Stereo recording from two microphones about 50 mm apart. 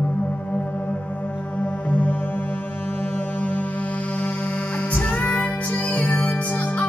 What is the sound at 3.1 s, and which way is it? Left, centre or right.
Music, left.